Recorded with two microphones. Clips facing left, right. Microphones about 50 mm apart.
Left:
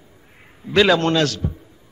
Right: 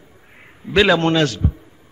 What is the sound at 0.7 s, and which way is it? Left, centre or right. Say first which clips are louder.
Speech: right 1 dB; centre.